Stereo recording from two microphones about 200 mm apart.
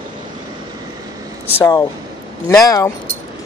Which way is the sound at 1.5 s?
20° left (ahead or behind).